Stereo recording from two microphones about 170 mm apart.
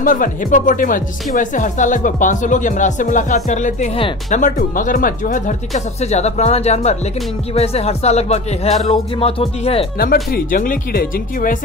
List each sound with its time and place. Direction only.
0.0 s speech: 50° left (ahead or behind)
5.9 s speech: 40° left (ahead or behind)
9.9 s speech: 60° left (ahead or behind)